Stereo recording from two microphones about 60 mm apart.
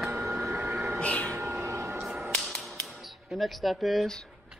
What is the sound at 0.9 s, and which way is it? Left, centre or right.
Vehicle, left.